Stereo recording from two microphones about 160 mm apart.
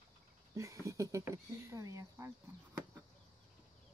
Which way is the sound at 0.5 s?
20° right (ahead or behind).